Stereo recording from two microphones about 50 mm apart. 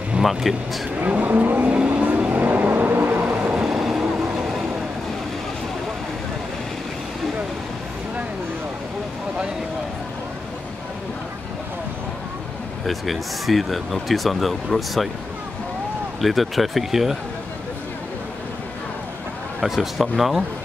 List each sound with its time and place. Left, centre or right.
0.2 s speech: centre
1.0 s speech: right
1.7 s vehicle: right
2.0 s vehicle: right
3.5 s train: centre
12.8 s speech: centre
16.2 s speech: centre
19.6 s speech: centre